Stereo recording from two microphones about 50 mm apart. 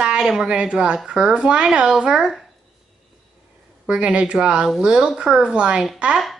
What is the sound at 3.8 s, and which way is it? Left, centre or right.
Speech, right.